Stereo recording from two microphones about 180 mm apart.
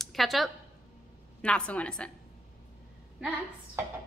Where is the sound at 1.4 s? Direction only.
5° left (ahead or behind).